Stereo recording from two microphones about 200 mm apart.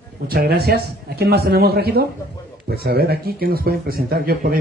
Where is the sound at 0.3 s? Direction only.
50° right (ahead or behind).